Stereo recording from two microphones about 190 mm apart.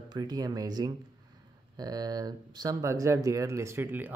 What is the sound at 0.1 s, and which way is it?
Speech, 20° right (ahead or behind).